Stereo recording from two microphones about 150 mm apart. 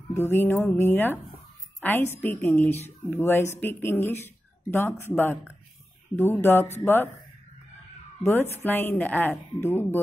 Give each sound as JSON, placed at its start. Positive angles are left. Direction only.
{"t": 0.1, "sound": "a woman's voice", "side_deg": 15}
{"t": 8.2, "sound": "speech", "side_deg": 15}